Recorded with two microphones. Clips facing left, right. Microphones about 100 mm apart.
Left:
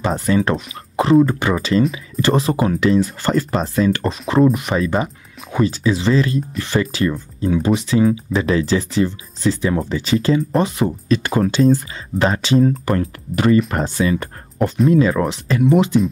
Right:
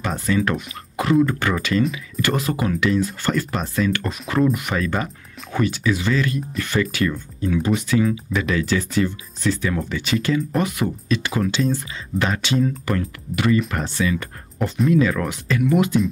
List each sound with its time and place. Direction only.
0.0 s speech: 30° left (ahead or behind)
11.1 s speech: 40° left (ahead or behind); by 15.9 s 25° left (ahead or behind)